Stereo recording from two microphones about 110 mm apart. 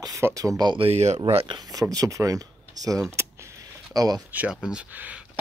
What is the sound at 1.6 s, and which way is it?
Speech, 35° right (ahead or behind).